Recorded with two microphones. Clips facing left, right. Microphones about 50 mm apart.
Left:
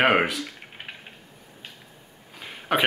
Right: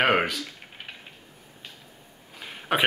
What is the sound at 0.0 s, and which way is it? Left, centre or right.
Speech, centre.